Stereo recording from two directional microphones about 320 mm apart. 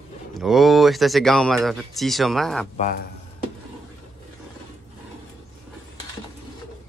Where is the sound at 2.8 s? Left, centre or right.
Left.